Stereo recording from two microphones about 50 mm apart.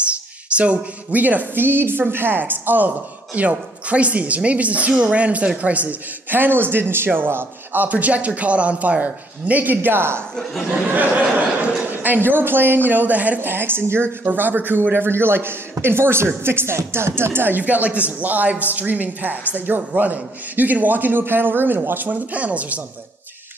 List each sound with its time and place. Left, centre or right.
0.6 s a man's voice: right
3.3 s a woman's voice: right
10.9 s a man's voice: right
13.4 s a man's voice: right
14.2 s a man's voice: right